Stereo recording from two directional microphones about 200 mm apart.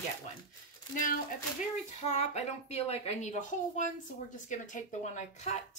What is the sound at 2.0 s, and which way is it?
A woman's voice, 35° left (ahead or behind).